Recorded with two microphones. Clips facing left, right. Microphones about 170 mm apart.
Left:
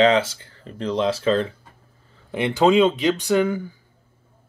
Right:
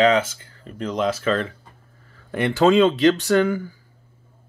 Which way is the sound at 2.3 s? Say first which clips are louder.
Even; 15° left (ahead or behind).